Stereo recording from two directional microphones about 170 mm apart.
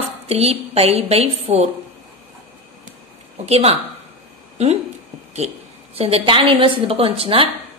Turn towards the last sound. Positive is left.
turn(degrees=-35)  # may be behind; listen again after turning